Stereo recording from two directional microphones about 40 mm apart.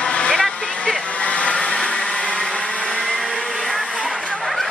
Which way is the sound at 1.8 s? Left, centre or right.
Left.